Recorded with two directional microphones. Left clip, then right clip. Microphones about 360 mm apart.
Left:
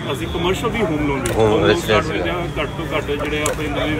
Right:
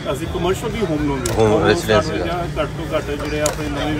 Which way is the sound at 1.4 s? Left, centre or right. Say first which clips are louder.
Even; centre.